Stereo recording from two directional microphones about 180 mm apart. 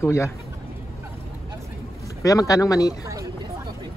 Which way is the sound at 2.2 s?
20° left (ahead or behind).